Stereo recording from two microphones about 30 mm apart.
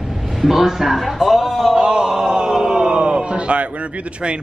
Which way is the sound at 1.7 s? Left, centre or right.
Right.